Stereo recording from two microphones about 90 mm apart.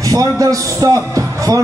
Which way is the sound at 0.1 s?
40° right (ahead or behind).